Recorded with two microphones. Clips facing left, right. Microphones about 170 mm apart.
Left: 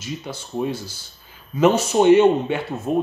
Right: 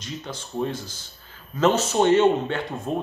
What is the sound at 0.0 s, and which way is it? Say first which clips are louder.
Speech: left 3 dB; 10° left (ahead or behind).